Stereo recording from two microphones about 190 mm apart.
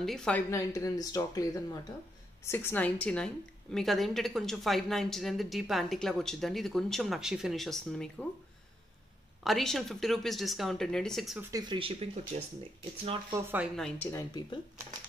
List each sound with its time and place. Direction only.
0.0 s a woman's voice: centre (ahead or behind)
0.5 s a woman's voice: 15° left (ahead or behind)
9.4 s a woman's voice: centre (ahead or behind)
11.4 s speech: 20° right (ahead or behind)
13.3 s speech: 10° right (ahead or behind)
13.7 s a woman's voice: 5° left (ahead or behind)
14.1 s speech: 20° left (ahead or behind)